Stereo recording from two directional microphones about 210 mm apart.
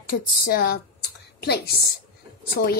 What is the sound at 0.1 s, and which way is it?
A woman's voice, 45° left (ahead or behind).